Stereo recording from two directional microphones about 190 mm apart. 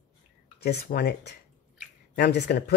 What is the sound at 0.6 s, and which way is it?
Speech, 60° left (ahead or behind).